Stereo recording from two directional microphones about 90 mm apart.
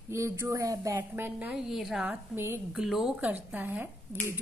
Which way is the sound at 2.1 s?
25° right (ahead or behind).